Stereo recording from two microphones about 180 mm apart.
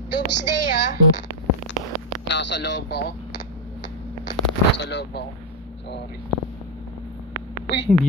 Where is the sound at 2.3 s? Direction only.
80° left.